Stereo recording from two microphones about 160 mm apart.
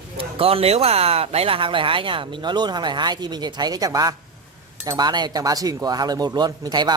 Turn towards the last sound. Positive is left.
turn(degrees=-25)  # may be behind; listen again after turning